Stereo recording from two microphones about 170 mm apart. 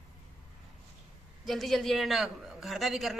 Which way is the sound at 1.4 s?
Centre (ahead or behind).